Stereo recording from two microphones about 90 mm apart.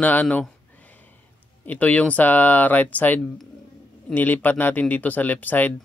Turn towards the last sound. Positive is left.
turn(degrees=20)  # may be behind; listen again after turning